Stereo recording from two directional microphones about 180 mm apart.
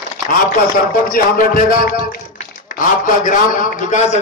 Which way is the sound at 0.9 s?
50° left (ahead or behind).